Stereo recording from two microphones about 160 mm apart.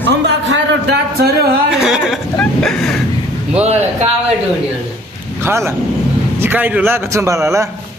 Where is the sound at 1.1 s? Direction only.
80° right.